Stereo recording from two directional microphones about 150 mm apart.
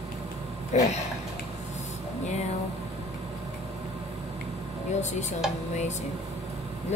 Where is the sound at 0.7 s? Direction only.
45° left (ahead or behind).